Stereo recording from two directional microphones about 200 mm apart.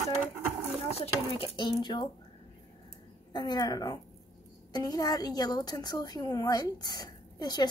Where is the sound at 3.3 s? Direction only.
20° left (ahead or behind).